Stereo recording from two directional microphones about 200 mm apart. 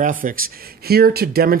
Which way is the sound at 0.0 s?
45° right (ahead or behind).